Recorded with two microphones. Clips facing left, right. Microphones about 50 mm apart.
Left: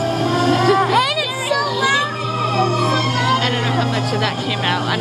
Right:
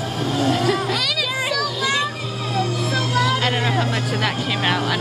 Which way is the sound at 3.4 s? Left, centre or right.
Centre.